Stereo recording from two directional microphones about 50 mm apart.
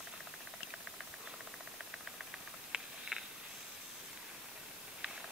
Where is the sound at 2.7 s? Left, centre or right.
Centre.